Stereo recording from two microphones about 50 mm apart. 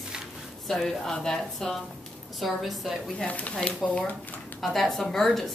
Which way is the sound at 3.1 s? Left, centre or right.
Left.